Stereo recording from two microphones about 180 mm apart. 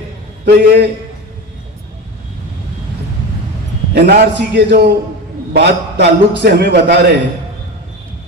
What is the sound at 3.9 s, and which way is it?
A man's voice, 65° right (ahead or behind).